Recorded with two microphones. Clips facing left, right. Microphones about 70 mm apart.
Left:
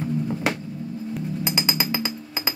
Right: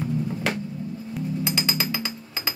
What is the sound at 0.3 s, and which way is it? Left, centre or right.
Music, centre.